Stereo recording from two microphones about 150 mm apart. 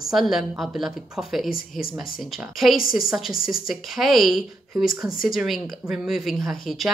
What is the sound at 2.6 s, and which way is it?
A woman's voice, centre (ahead or behind).